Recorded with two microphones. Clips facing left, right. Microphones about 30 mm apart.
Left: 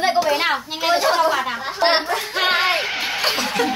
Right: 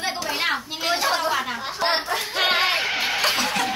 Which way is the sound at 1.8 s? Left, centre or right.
Left.